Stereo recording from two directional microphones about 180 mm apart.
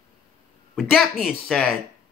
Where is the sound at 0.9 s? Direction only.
Centre (ahead or behind).